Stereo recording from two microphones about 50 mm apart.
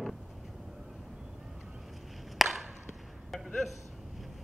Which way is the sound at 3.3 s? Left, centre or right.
Centre.